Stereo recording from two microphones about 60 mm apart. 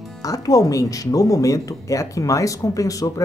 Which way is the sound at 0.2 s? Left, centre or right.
Left.